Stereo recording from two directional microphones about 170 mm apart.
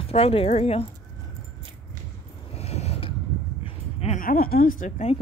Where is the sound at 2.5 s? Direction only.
40° left (ahead or behind).